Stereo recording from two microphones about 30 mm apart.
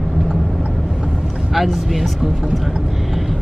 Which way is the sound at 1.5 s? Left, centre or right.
Centre.